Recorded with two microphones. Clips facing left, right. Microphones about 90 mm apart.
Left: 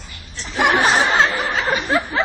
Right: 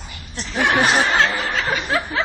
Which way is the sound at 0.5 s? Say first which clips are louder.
Left 1 dB; 15° left (ahead or behind).